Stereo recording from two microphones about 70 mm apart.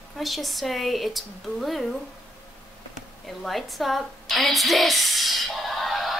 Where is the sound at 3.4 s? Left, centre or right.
Centre.